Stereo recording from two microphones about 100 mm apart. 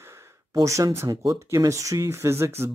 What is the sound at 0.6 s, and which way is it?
Speech, 35° right (ahead or behind).